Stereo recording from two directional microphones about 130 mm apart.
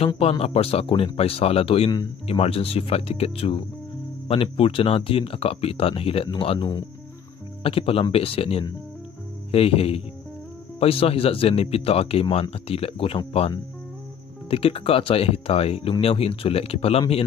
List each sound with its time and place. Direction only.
0.2 s speech: 50° left (ahead or behind)
14.5 s speech: 45° left (ahead or behind)